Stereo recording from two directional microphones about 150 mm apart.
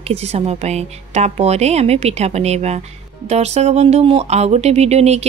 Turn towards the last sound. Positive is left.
turn(degrees=-45)  # may be behind; listen again after turning